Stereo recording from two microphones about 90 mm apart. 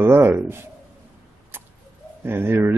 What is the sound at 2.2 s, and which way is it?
Speech, 25° right (ahead or behind).